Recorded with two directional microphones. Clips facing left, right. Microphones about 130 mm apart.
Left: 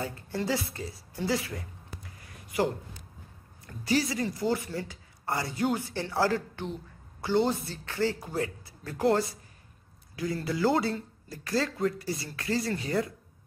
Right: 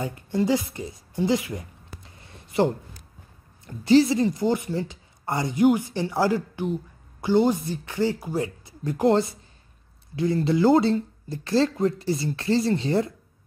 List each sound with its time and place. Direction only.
0.0 s a woman's voice: 15° right (ahead or behind)